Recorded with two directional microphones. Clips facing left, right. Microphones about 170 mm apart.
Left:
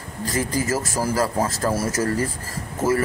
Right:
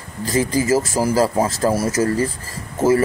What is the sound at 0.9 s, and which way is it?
Speech, 25° right (ahead or behind).